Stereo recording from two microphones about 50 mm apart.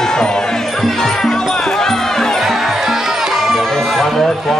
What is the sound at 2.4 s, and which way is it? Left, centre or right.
Music, centre.